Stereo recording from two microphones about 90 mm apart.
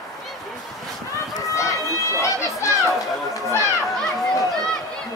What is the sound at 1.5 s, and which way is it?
Children playing, 35° left (ahead or behind).